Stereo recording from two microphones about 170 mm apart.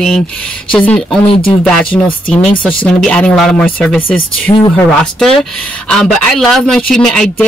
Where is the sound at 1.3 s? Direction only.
30° left (ahead or behind).